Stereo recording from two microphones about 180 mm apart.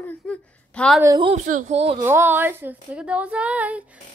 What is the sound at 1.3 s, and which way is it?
Speech, 45° right (ahead or behind).